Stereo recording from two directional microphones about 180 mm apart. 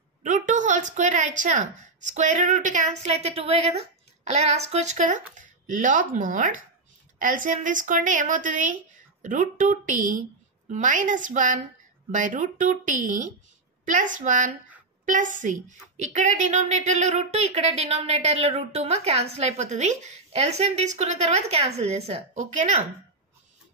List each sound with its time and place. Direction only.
0.2 s a woman's voice: 45° right (ahead or behind)